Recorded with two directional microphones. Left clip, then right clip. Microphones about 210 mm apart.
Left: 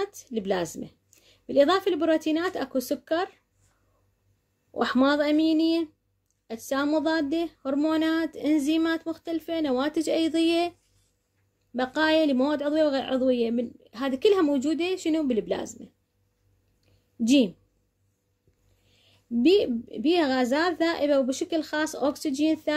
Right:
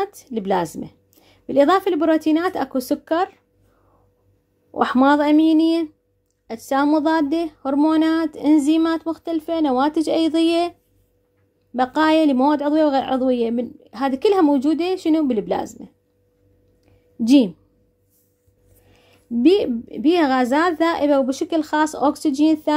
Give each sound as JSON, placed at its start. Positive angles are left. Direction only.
{"t": 0.0, "sound": "a woman's voice", "side_deg": -20}
{"t": 4.7, "sound": "speech", "side_deg": -15}
{"t": 11.7, "sound": "speech", "side_deg": -20}
{"t": 16.8, "sound": "a sound", "side_deg": -15}
{"t": 19.4, "sound": "a woman's voice", "side_deg": -20}